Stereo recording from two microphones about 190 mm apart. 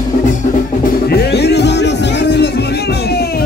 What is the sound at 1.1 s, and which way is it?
Music, 60° left (ahead or behind).